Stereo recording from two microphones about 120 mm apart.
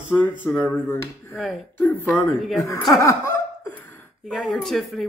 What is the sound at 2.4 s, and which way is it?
Speech, centre (ahead or behind).